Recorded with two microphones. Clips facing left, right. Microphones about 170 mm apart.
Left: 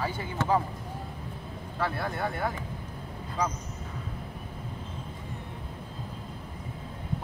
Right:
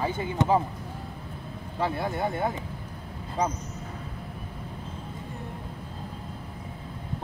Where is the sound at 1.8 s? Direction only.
20° right (ahead or behind).